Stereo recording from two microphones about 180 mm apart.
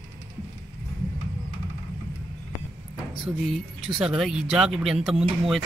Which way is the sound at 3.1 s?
Centre (ahead or behind).